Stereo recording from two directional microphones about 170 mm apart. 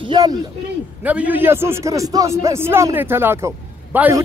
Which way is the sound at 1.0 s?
10° right (ahead or behind).